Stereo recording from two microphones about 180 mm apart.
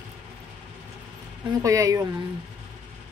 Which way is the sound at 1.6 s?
20° right (ahead or behind).